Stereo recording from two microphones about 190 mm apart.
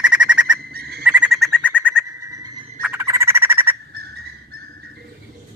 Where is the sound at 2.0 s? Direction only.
15° right (ahead or behind).